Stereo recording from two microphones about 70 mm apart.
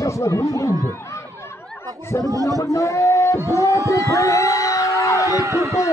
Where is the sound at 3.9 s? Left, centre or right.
Left.